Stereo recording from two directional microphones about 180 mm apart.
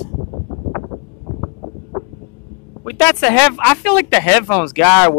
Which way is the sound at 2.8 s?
10° left (ahead or behind).